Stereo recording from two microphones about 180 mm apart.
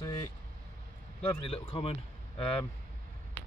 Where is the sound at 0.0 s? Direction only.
20° left (ahead or behind).